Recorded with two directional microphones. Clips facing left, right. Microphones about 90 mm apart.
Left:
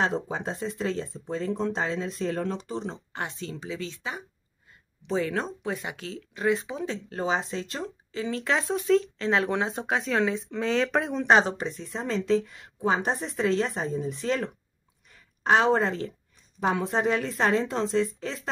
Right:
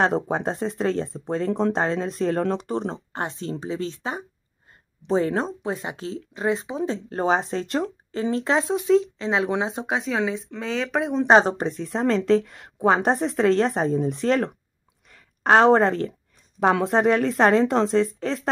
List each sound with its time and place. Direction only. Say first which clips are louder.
0.1 s a woman's voice: right 6 dB; 60° right (ahead or behind)
8.1 s speech: right 4 dB; 35° right (ahead or behind)
8.7 s speech: right 4 dB; 15° right (ahead or behind)
11.2 s speech: right 5 dB; 35° right (ahead or behind)
11.5 s speech: right 6 dB; 50° right (ahead or behind)
11.9 s a woman's voice: right 6 dB; 70° right (ahead or behind)
16.5 s a woman's voice: right 6 dB; 80° right
18.0 s speech: right 6 dB; 50° right (ahead or behind)